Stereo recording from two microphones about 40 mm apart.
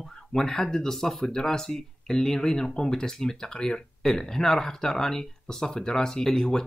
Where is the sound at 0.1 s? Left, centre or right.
Centre.